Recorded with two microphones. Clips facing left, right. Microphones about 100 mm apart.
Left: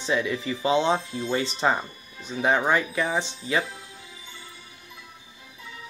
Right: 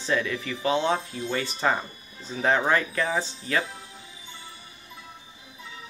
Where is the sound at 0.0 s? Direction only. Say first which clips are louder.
Left 1 dB; 15° left (ahead or behind).